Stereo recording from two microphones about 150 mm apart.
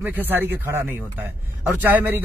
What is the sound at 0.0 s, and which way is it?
A man's voice, 15° right (ahead or behind).